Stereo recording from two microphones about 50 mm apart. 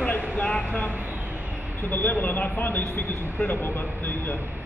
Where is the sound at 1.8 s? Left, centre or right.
Left.